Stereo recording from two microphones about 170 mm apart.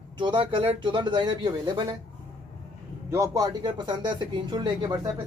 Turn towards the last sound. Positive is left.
turn(degrees=-25)  # may be behind; listen again after turning